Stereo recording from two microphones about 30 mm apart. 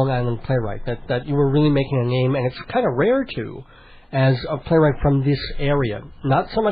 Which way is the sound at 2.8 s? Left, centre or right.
Right.